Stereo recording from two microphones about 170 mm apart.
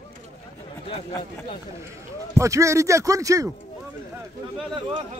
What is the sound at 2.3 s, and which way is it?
Speech, 20° right (ahead or behind).